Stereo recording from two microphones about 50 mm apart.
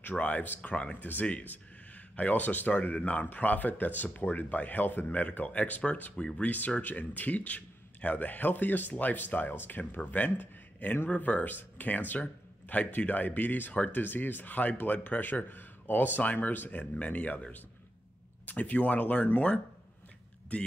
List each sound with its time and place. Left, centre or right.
0.0 s speech: left
6.8 s speech: left
11.1 s speech: left
18.4 s speech: left